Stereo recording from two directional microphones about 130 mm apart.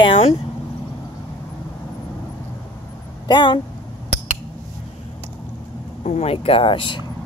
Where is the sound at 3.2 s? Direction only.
35° left (ahead or behind).